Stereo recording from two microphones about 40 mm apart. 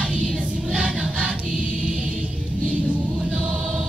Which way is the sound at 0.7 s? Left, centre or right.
Right.